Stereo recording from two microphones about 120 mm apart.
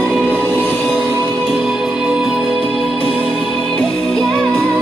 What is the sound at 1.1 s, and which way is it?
Music, 25° right (ahead or behind).